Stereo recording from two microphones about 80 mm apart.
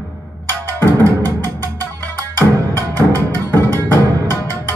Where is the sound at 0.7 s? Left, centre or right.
Left.